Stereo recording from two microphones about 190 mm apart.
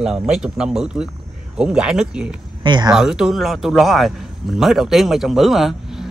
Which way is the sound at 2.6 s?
25° right (ahead or behind).